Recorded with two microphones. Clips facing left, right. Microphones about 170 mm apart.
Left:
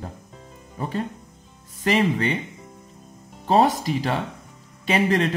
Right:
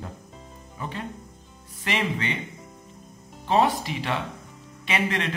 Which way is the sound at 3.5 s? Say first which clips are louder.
Left 3 dB; 40° left (ahead or behind).